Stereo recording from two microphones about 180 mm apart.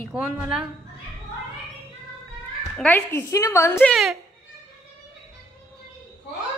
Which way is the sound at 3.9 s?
Centre (ahead or behind).